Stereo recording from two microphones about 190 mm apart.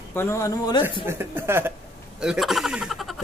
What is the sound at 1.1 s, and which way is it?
Speech, 10° right (ahead or behind).